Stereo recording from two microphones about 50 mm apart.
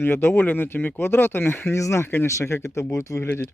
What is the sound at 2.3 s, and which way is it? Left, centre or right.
Speech, left.